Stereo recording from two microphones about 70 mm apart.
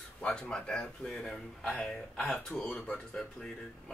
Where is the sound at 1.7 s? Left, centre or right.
Centre.